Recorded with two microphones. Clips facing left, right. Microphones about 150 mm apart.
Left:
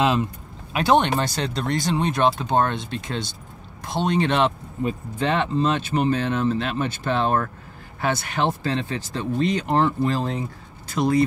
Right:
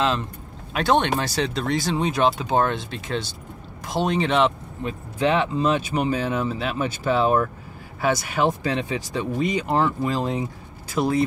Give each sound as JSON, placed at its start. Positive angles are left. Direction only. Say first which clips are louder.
{"t": 0.0, "sound": "speech", "louder": "left 3 dB", "side_deg": 10}